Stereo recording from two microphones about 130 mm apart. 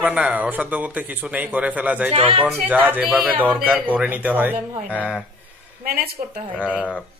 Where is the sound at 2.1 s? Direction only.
45° right (ahead or behind).